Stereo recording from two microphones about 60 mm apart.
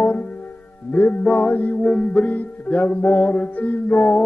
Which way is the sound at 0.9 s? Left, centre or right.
Left.